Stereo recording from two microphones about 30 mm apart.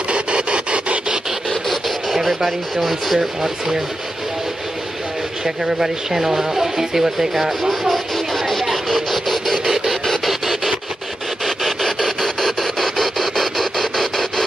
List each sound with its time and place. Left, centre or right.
0.1 s rub: right
1.7 s speech: centre
5.6 s speech: centre
7.9 s vehicle: centre
10.2 s a sound: centre